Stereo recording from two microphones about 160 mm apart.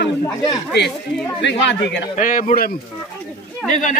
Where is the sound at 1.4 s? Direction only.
90° left.